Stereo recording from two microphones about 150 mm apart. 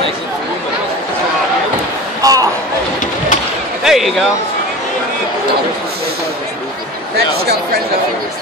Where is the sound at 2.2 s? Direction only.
25° right (ahead or behind).